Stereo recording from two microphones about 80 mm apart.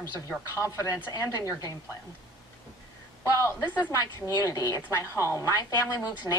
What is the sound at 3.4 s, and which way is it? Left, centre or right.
Speech, left.